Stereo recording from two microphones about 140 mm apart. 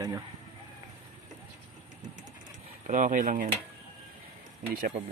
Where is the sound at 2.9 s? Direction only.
70° right (ahead or behind).